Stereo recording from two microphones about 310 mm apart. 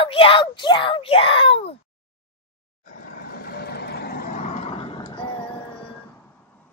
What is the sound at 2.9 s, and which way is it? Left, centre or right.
Vehicle, left.